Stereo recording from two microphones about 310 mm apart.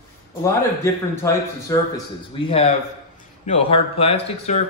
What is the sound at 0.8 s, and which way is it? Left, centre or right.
A man's voice, centre.